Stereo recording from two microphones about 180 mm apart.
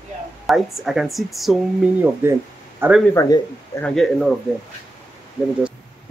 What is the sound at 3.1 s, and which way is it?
Speech, 15° left (ahead or behind).